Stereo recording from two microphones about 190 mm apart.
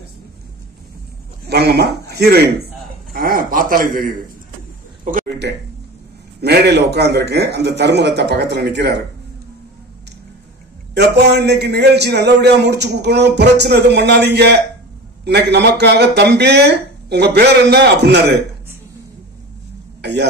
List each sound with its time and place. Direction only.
1.5 s a man's voice: 60° right (ahead or behind)
3.1 s a sound: 50° right (ahead or behind)
6.4 s a man's voice: 60° right (ahead or behind)
11.0 s a man's voice: 60° right (ahead or behind)
20.0 s speech: 65° right (ahead or behind)